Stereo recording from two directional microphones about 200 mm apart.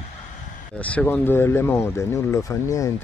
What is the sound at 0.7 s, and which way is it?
Speech, 5° left (ahead or behind).